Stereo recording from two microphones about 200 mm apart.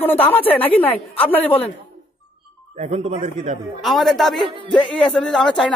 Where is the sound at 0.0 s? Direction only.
10° left (ahead or behind).